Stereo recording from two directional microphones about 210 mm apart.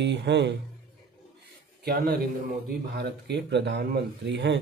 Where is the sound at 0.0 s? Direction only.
55° right (ahead or behind).